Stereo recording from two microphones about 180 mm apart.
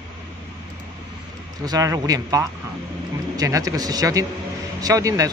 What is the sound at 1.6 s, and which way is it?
A man's voice, 20° right (ahead or behind).